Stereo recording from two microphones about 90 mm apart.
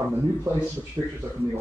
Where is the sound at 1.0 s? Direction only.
35° right (ahead or behind).